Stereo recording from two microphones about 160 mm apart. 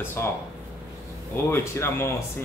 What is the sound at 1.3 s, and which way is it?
Speech, 15° left (ahead or behind).